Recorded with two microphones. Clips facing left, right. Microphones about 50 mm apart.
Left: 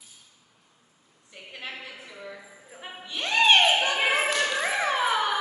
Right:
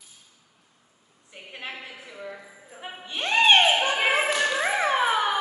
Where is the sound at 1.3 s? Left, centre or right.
Centre.